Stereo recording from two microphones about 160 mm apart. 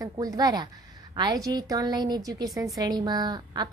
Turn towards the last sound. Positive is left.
turn(degrees=-25)  # may be behind; listen again after turning